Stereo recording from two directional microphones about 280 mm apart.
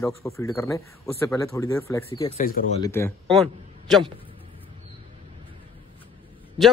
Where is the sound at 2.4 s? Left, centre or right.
Left.